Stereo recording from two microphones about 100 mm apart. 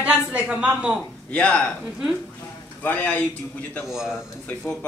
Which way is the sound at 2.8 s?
15° left (ahead or behind).